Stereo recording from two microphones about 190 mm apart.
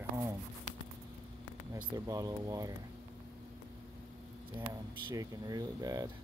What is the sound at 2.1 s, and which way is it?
Speech, 20° right (ahead or behind).